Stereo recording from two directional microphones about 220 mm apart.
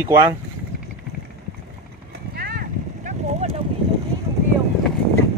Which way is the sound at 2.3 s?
45° right (ahead or behind).